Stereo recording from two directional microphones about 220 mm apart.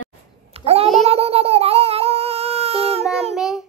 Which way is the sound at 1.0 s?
25° right (ahead or behind).